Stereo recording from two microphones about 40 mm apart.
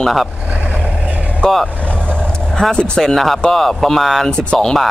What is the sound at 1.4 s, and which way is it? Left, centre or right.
Speech, centre.